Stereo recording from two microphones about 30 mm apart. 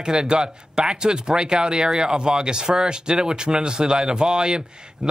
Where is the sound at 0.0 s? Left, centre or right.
Right.